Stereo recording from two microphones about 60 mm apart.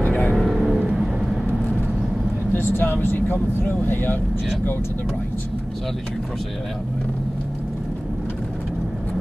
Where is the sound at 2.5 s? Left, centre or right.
Left.